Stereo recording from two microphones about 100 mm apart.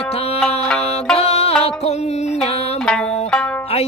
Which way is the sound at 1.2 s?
90° left.